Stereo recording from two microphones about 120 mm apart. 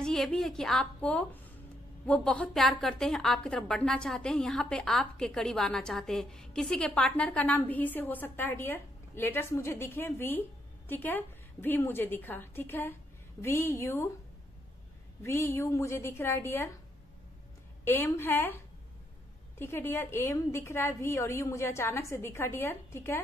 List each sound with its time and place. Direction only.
0.0 s a woman's voice: 5° left (ahead or behind); by 14.1 s 25° left (ahead or behind)
15.2 s a woman's voice: 20° left (ahead or behind)
17.8 s a woman's voice: 20° left (ahead or behind)
19.6 s a woman's voice: 20° left (ahead or behind)